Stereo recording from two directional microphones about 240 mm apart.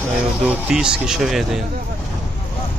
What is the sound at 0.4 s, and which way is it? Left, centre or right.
Speech, centre.